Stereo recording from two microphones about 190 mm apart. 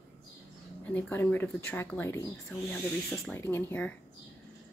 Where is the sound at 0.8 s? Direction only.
10° left (ahead or behind).